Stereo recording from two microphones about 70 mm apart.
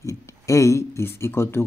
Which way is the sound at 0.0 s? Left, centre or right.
Left.